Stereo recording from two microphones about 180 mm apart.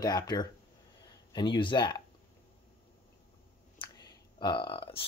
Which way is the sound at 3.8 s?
25° left (ahead or behind).